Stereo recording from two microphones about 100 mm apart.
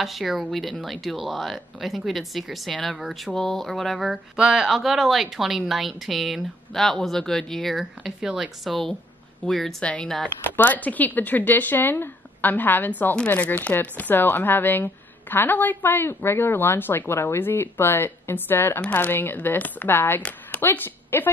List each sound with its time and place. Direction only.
0.0 s speech: centre (ahead or behind); by 21.3 s 20° left (ahead or behind)